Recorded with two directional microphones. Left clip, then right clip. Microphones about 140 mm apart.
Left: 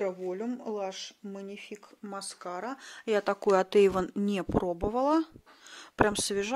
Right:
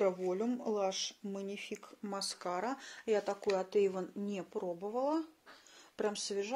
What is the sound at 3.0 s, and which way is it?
Speech, 55° left (ahead or behind).